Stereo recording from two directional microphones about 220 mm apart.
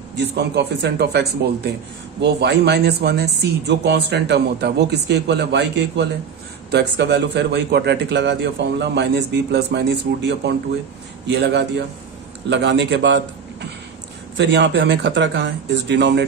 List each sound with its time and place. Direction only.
0.2 s a man's voice: 50° right (ahead or behind)